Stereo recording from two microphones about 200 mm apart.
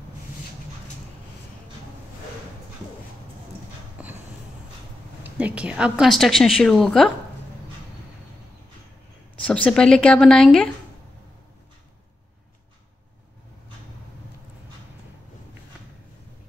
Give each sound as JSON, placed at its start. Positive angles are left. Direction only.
{"t": 4.0, "sound": "a sound", "side_deg": -5}
{"t": 5.2, "sound": "a woman's voice", "side_deg": -5}
{"t": 9.5, "sound": "a woman's voice", "side_deg": 5}